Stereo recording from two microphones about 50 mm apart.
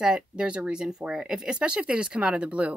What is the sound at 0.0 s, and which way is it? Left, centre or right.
Speech, centre.